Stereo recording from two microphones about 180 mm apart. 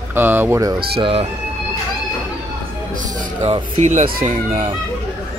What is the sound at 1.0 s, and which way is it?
Speech, 30° right (ahead or behind).